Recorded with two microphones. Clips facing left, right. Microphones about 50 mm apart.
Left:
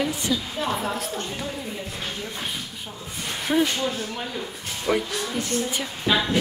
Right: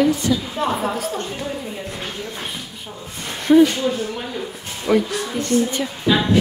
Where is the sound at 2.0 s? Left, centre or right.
Centre.